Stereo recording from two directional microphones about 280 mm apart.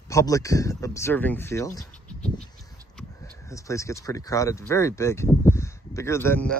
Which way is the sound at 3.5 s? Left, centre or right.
Centre.